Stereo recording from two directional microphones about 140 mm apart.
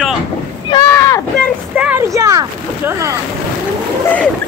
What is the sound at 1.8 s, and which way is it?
Speech, 10° right (ahead or behind).